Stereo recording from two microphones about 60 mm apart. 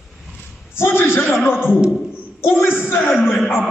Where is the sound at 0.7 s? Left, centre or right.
Left.